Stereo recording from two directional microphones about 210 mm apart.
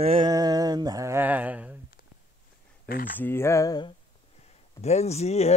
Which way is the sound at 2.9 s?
40° left (ahead or behind).